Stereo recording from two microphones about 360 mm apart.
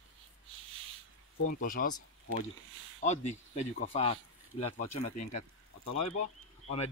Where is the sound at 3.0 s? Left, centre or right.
Centre.